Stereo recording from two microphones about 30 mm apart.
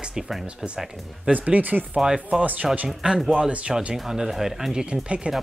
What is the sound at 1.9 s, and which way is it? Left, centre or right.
Speech, right.